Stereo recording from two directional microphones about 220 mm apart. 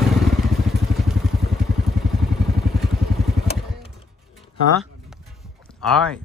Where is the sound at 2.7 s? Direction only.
Centre (ahead or behind).